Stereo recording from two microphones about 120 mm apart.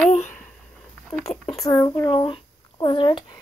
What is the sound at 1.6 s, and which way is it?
A woman's voice, 35° left (ahead or behind).